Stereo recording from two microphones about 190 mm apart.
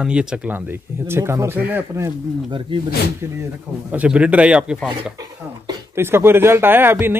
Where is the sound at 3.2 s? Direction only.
15° right (ahead or behind).